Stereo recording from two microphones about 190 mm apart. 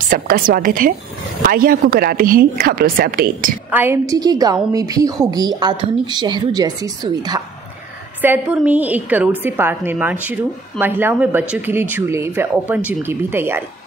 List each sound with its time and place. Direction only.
0.1 s a woman's voice: 45° right (ahead or behind)
3.7 s speech: 10° right (ahead or behind)
8.2 s a woman's voice: 10° right (ahead or behind)